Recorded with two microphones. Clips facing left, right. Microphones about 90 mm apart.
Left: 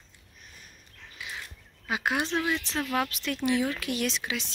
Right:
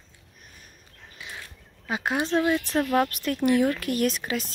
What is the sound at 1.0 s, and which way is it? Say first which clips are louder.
Mechanisms: left 1 dB; 30° right (ahead or behind).